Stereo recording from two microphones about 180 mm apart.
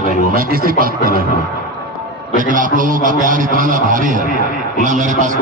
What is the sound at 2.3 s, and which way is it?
A man's voice, 45° right (ahead or behind).